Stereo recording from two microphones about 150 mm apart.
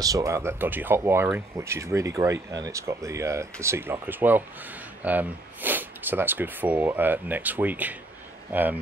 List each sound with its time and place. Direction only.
0.0 s speech: 20° right (ahead or behind)